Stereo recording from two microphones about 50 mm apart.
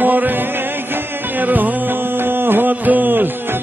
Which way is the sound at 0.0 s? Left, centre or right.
Right.